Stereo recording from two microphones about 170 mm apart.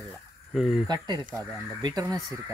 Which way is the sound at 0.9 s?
25° right (ahead or behind).